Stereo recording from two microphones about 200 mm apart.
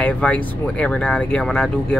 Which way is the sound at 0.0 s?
5° left (ahead or behind).